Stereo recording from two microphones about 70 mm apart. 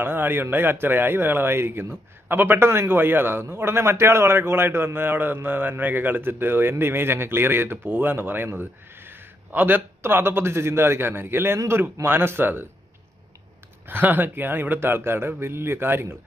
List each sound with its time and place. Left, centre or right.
0.0 s a man's voice: right
13.8 s a man's voice: right